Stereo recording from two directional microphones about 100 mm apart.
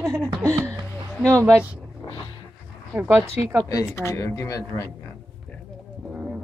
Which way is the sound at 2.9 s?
20° right (ahead or behind).